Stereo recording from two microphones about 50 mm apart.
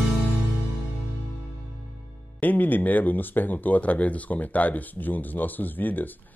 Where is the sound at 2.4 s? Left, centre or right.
Left.